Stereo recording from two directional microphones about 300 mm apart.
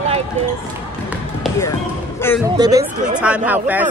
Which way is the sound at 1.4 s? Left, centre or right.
Centre.